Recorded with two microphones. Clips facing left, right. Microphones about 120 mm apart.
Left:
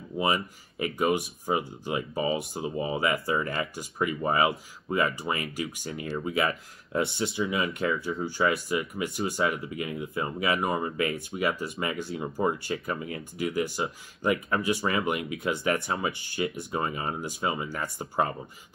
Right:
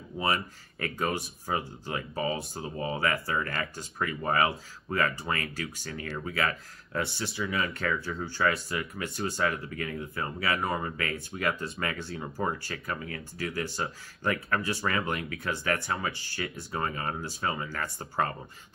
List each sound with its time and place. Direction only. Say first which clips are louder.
0.2 s speech: left 3 dB; 15° left (ahead or behind)